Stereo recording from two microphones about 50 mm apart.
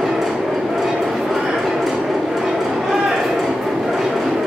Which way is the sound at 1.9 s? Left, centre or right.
Centre.